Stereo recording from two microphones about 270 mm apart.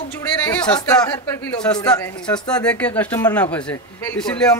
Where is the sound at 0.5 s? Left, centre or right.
Centre.